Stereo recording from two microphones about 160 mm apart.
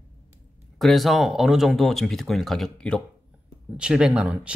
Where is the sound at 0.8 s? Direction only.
Centre (ahead or behind).